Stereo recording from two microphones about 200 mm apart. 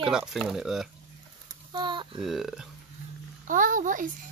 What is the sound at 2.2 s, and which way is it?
Speech, centre (ahead or behind).